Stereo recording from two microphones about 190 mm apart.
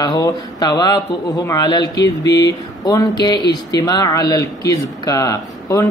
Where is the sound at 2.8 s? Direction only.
20° left (ahead or behind).